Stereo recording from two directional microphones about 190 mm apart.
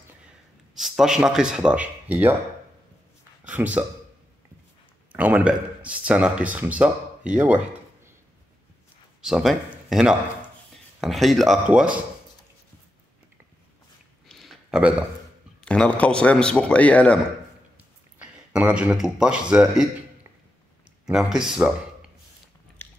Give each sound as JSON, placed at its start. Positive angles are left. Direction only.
{"t": 0.7, "sound": "speech", "side_deg": 0}
{"t": 3.4, "sound": "speech", "side_deg": -5}
{"t": 5.1, "sound": "speech", "side_deg": -10}
{"t": 9.2, "sound": "a man's voice", "side_deg": 0}
{"t": 14.2, "sound": "a sound", "side_deg": 0}
{"t": 15.6, "sound": "a man's voice", "side_deg": 5}
{"t": 17.7, "sound": "speech", "side_deg": -10}
{"t": 21.0, "sound": "a man's voice", "side_deg": -5}